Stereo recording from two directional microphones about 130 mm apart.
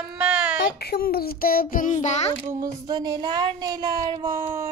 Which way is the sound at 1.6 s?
90° left.